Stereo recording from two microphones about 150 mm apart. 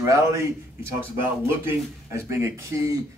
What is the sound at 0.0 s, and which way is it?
Speech, 20° right (ahead or behind).